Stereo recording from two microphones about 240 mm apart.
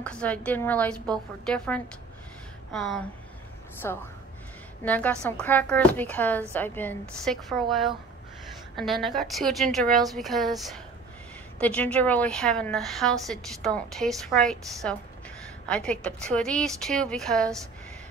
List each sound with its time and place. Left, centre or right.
0.0 s a woman's voice: centre
3.8 s a woman's voice: centre